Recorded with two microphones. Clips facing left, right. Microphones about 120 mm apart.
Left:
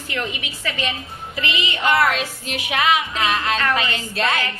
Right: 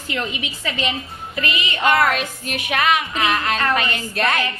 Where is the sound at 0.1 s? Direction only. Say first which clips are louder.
Right 2 dB; 20° right (ahead or behind).